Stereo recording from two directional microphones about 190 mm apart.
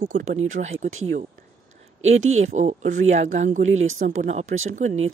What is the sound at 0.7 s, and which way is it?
Speech, 90° right.